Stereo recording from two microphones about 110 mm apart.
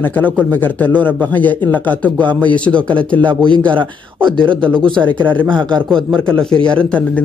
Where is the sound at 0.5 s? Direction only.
15° left (ahead or behind).